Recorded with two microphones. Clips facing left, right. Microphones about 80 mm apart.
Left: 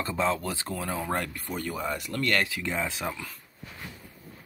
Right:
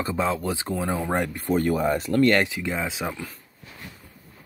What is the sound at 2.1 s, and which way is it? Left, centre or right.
Speech, right.